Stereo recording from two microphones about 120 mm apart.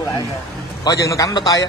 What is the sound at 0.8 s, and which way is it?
Speech, 30° left (ahead or behind).